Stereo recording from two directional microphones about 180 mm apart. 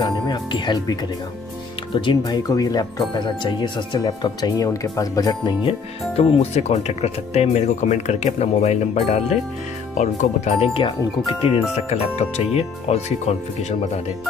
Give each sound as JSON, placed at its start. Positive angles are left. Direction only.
{"t": 0.0, "sound": "speech", "side_deg": 25}
{"t": 2.0, "sound": "speech", "side_deg": 25}